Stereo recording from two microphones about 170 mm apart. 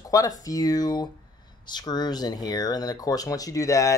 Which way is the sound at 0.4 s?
20° left (ahead or behind).